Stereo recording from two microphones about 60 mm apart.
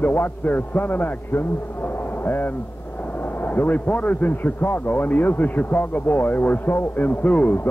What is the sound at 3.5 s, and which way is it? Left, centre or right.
A man's voice, left.